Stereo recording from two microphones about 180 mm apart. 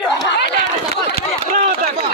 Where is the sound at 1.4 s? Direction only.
45° right (ahead or behind).